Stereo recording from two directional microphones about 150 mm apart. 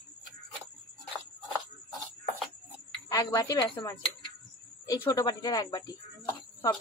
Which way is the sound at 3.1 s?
20° left (ahead or behind).